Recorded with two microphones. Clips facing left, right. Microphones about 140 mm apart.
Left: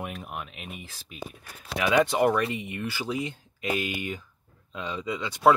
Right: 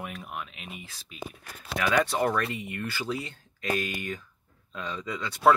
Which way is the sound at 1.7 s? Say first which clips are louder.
Left 3 dB; 15° left (ahead or behind).